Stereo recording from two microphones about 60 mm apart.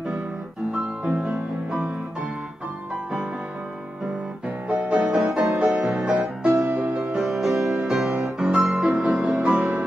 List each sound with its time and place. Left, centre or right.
0.7 s music: centre
4.6 s music: centre
5.1 s music: centre
6.5 s music: right
7.2 s music: centre